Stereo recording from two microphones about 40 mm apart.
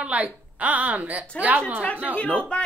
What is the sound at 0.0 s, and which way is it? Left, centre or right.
A woman's voice, right.